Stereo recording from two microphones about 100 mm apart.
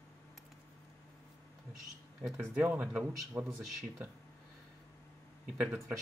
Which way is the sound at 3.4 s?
25° right (ahead or behind).